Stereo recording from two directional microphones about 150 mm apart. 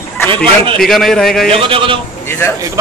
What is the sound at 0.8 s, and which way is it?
Speech, centre (ahead or behind).